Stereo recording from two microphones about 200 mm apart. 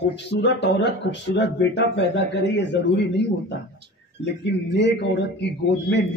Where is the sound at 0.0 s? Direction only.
60° left (ahead or behind).